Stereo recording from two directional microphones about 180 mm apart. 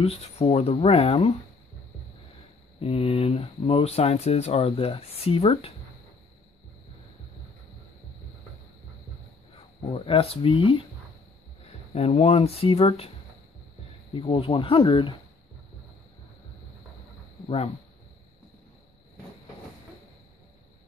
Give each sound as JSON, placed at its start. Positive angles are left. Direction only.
{"t": 0.0, "sound": "speech", "side_deg": 35}
{"t": 2.8, "sound": "speech", "side_deg": 35}
{"t": 9.9, "sound": "speech", "side_deg": 30}
{"t": 11.9, "sound": "speech", "side_deg": 35}
{"t": 14.1, "sound": "speech", "side_deg": 30}